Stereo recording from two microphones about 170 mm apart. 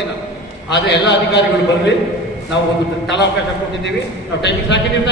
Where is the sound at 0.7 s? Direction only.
90° left.